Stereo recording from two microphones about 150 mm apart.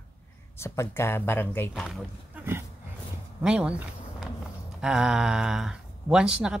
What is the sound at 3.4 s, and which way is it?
Speech, 5° right (ahead or behind).